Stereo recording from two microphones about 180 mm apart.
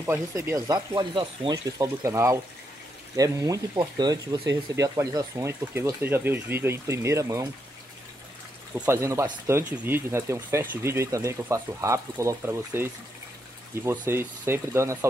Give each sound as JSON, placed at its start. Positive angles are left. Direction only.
{"t": 0.0, "sound": "speech", "side_deg": -15}
{"t": 8.7, "sound": "speech", "side_deg": -15}